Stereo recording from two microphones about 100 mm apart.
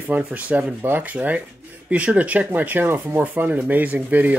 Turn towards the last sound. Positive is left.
turn(degrees=-15)  # may be behind; listen again after turning